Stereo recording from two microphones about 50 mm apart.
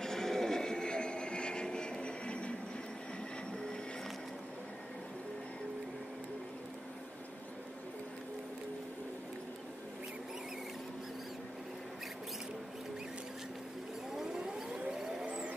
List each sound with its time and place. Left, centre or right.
0.0 s vehicle: centre
14.1 s civil defense siren: centre